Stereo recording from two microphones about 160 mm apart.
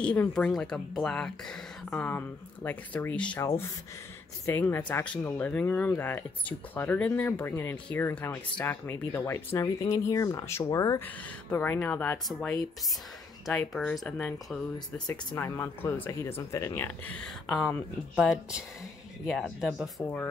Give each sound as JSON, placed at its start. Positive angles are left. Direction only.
{"t": 0.0, "sound": "speech", "side_deg": 5}
{"t": 15.0, "sound": "speech", "side_deg": 15}
{"t": 18.2, "sound": "speech", "side_deg": -5}